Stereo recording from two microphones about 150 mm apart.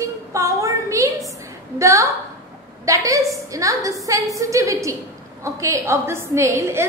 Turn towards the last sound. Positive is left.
turn(degrees=-20)  # may be behind; listen again after turning